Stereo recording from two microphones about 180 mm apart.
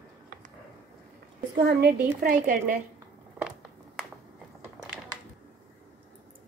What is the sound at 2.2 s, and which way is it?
Speech, 50° right (ahead or behind).